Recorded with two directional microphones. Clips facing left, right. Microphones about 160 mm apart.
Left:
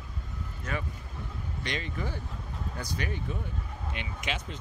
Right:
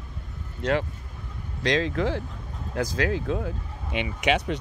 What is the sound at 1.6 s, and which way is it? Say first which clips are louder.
Speech: right 12 dB; 90° right.